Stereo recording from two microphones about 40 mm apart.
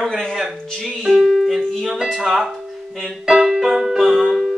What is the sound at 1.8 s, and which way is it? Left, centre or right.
Speech, right.